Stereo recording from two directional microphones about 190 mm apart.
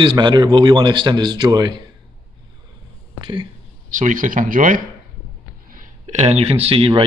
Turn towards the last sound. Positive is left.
turn(degrees=-30)  # may be behind; listen again after turning